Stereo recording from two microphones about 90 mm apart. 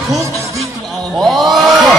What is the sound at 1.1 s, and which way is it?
Speech, centre (ahead or behind).